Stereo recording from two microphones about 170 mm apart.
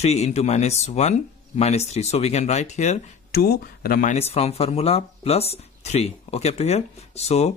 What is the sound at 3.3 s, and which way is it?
Speech, 65° left (ahead or behind).